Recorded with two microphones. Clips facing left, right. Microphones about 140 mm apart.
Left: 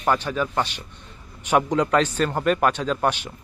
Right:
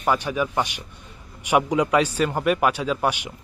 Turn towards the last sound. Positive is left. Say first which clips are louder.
# even
turn(degrees=-10)  # may be behind; listen again after turning